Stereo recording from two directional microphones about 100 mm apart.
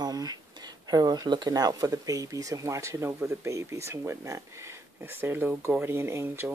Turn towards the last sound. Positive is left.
turn(degrees=-20)  # may be behind; listen again after turning